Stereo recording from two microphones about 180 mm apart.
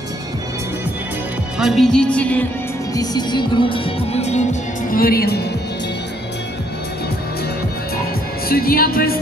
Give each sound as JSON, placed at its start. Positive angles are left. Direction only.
{"t": 1.6, "sound": "music", "side_deg": 0}
{"t": 2.9, "sound": "music", "side_deg": 20}
{"t": 8.5, "sound": "speech", "side_deg": 55}